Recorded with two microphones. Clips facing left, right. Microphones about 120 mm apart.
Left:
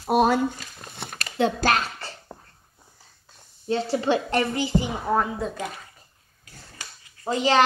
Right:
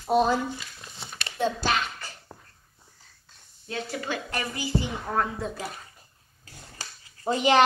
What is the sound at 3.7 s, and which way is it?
A woman's voice, 30° left (ahead or behind).